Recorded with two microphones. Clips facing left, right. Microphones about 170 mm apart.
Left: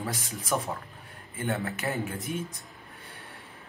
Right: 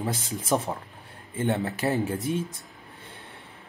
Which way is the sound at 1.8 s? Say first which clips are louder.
Right 6 dB; 30° right (ahead or behind).